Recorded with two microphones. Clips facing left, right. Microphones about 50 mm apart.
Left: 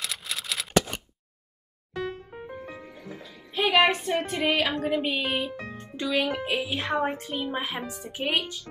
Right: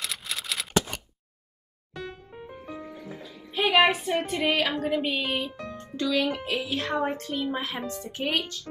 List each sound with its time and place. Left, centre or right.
0.0 s scissors: centre
2.7 s music: centre
5.8 s a child's voice: centre